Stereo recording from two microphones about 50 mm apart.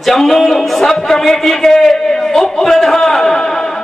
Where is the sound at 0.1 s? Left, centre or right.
Centre.